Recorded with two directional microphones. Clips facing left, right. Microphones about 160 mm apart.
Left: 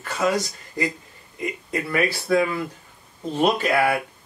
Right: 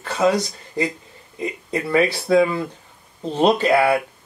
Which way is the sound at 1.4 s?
25° right (ahead or behind).